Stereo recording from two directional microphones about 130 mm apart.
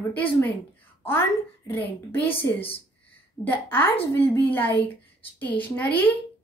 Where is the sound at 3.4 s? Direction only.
15° left (ahead or behind).